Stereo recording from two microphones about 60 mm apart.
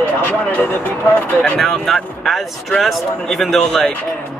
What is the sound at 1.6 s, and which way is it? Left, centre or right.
Speech, centre.